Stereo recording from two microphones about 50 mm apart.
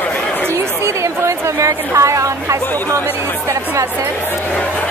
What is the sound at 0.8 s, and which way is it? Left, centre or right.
A woman's voice, right.